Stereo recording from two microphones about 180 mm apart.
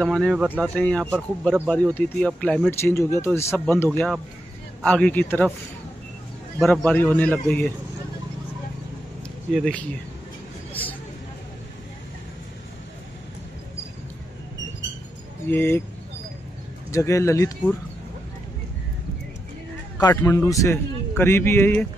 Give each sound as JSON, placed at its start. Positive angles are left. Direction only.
{"t": 0.0, "sound": "speech", "side_deg": 0}
{"t": 6.6, "sound": "speech", "side_deg": 5}
{"t": 9.5, "sound": "speech", "side_deg": 5}
{"t": 10.7, "sound": "vehicle", "side_deg": 10}
{"t": 15.5, "sound": "speech", "side_deg": 10}
{"t": 16.9, "sound": "speech", "side_deg": 15}
{"t": 20.0, "sound": "speech", "side_deg": 15}